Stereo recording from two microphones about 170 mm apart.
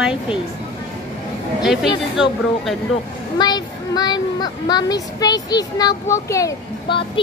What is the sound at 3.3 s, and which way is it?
A woman's voice, 25° left (ahead or behind).